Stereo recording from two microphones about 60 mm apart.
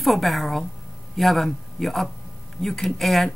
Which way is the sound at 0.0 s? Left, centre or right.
Centre.